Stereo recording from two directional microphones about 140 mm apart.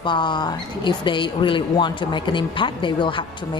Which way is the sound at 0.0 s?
35° left (ahead or behind).